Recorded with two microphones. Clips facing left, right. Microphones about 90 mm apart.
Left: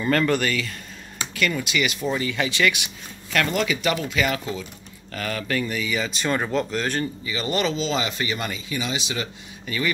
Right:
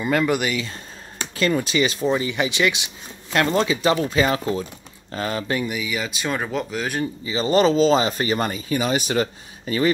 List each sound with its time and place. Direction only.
0.0 s speech: 10° right (ahead or behind)
1.3 s speech: 30° right (ahead or behind)
2.0 s speech: 20° right (ahead or behind)
5.7 s speech: 10° right (ahead or behind)
7.2 s speech: 30° right (ahead or behind)